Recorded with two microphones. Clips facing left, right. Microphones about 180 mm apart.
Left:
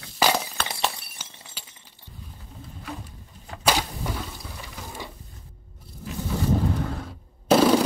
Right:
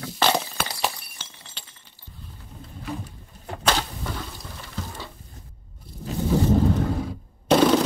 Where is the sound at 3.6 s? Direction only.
10° left (ahead or behind).